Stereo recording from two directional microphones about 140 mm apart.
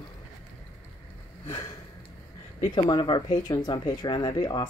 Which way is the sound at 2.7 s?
35° left (ahead or behind).